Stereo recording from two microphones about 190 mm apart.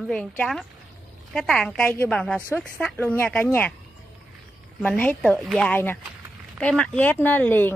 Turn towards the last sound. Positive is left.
turn(degrees=10)  # may be behind; listen again after turning